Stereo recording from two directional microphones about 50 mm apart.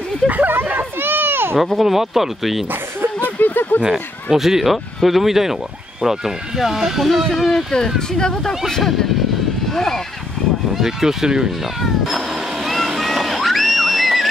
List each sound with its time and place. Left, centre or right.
0.3 s a sound: right
1.6 s speech: centre
2.7 s chuckle: right
3.3 s a sound: left
3.8 s speech: centre
10.7 s speech: centre
11.8 s cat: centre